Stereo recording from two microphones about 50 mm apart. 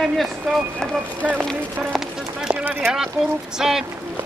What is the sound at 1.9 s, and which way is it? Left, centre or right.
Run, centre.